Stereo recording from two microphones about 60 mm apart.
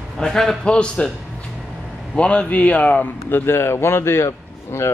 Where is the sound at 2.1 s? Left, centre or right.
Centre.